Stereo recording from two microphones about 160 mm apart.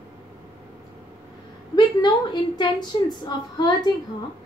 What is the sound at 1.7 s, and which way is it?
A woman's voice, 25° left (ahead or behind).